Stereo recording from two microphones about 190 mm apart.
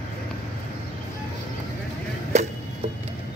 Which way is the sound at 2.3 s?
35° right (ahead or behind).